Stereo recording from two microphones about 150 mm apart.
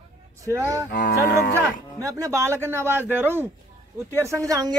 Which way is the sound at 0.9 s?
90° left.